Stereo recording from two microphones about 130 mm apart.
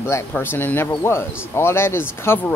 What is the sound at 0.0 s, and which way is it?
Speech, 20° left (ahead or behind).